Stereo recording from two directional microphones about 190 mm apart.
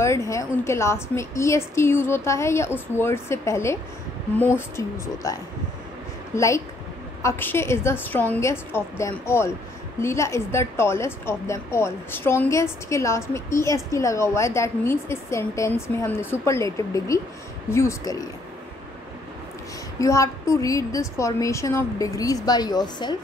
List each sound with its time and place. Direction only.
0.0 s a woman's voice: 15° left (ahead or behind)
20.0 s a woman's voice: 15° left (ahead or behind)